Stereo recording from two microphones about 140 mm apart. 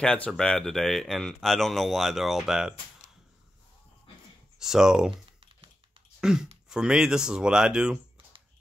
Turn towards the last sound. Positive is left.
turn(degrees=-5)  # may be behind; listen again after turning